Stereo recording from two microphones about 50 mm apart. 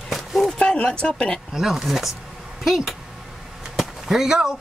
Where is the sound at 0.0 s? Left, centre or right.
Centre.